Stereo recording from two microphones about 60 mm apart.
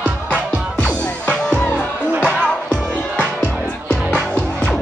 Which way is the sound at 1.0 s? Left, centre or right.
Centre.